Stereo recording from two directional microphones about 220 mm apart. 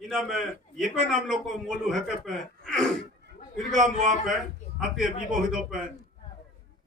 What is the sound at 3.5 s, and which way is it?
Speech, 35° right (ahead or behind).